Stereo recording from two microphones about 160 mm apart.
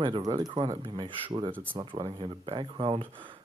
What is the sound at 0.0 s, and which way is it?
Speech, 30° right (ahead or behind).